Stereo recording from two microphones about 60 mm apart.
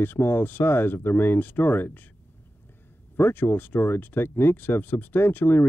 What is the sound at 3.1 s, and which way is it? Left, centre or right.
Speech, left.